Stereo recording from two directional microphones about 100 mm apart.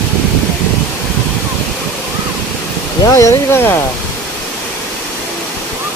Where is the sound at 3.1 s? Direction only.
30° left (ahead or behind).